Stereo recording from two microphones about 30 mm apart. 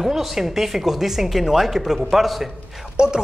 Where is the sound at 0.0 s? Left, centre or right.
Centre.